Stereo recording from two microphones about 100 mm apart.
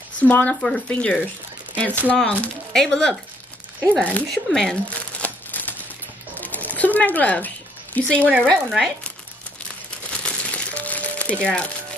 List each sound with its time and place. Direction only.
0.2 s speech: 15° left (ahead or behind)
4.3 s crumpling: 5° left (ahead or behind)
6.3 s a sound: 15° left (ahead or behind)
8.6 s speech: centre (ahead or behind)
10.1 s crumpling: 10° left (ahead or behind)